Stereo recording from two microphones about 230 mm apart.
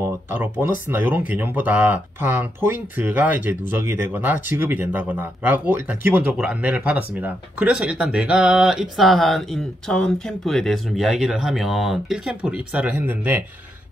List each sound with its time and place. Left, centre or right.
0.0 s speech: centre